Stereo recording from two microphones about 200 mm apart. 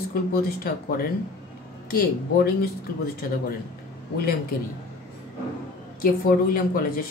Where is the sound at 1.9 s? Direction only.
50° left (ahead or behind).